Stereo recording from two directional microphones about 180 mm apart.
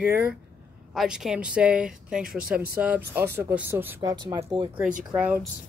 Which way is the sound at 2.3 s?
55° right (ahead or behind).